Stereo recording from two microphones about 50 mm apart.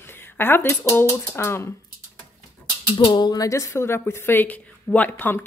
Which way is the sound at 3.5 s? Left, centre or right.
Left.